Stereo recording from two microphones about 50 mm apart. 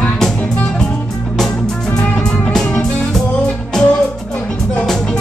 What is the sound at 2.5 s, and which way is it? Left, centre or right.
Music, centre.